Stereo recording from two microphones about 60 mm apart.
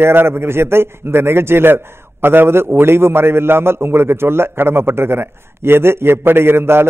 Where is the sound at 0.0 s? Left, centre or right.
Right.